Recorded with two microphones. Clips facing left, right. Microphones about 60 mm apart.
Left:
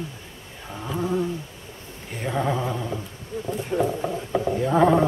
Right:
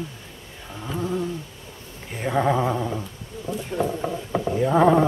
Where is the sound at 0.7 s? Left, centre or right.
Centre.